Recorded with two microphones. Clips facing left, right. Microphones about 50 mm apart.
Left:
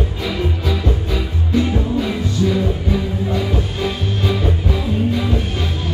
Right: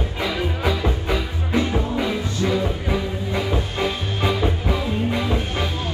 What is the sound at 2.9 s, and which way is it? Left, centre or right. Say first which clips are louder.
Music: left 3 dB; centre.